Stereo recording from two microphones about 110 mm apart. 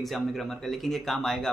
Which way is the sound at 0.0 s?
Centre (ahead or behind).